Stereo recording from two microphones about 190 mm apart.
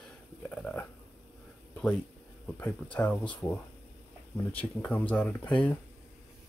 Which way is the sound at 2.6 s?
5° left (ahead or behind).